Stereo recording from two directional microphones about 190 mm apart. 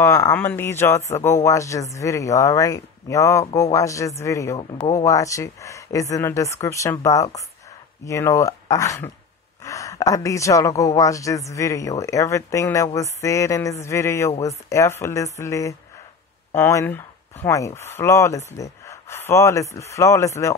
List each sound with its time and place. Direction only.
0.0 s speech: 15° left (ahead or behind)